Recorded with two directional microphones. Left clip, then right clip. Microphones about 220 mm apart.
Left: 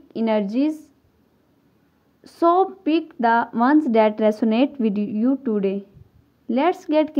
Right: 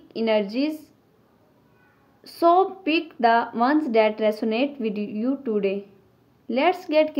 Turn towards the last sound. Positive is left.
turn(degrees=45)  # may be behind; listen again after turning